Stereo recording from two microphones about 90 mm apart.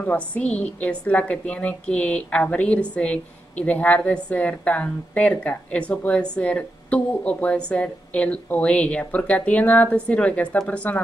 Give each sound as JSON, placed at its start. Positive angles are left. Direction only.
{"t": 0.0, "sound": "a woman's voice", "side_deg": 15}